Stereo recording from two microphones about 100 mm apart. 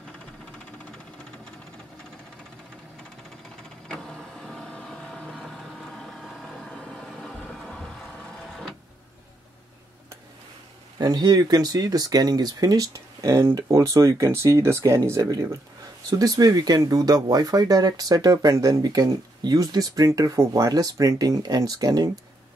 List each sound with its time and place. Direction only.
3.9 s vehicle: 5° left (ahead or behind)
11.0 s speech: 40° right (ahead or behind); by 15.2 s 25° right (ahead or behind)
16.1 s speech: 40° right (ahead or behind)